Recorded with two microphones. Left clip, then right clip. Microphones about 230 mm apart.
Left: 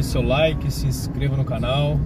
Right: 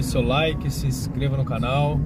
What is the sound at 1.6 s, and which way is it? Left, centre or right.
Speech, centre.